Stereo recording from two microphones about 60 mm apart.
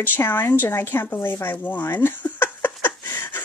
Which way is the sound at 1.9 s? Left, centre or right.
Left.